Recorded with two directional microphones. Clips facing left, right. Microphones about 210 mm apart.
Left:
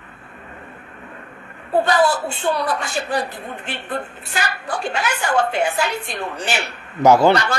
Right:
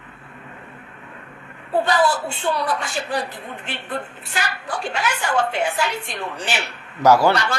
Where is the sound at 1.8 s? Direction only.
45° left (ahead or behind).